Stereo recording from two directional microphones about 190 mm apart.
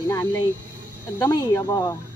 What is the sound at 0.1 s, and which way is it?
Speech, 15° left (ahead or behind).